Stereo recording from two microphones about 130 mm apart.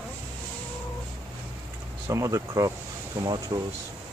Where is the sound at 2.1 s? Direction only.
25° right (ahead or behind).